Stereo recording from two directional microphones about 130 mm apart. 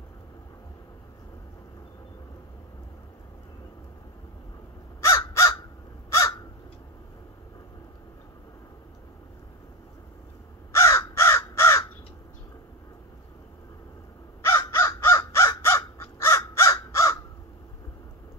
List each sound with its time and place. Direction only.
5.0 s crow: 25° left (ahead or behind)
10.7 s crow: 20° left (ahead or behind)
14.4 s crow: 20° left (ahead or behind)